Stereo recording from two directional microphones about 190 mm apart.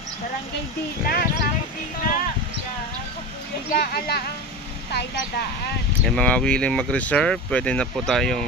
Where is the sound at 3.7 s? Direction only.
55° left (ahead or behind).